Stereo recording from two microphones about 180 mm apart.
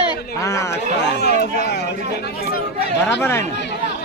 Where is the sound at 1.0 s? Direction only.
65° left (ahead or behind).